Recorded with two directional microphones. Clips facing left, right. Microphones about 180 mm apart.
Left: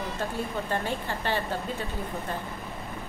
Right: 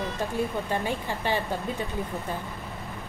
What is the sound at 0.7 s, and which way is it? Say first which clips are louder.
Speech: right 1 dB; 15° right (ahead or behind).